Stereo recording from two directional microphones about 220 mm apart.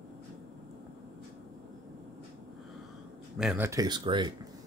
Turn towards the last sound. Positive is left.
turn(degrees=-20)  # may be behind; listen again after turning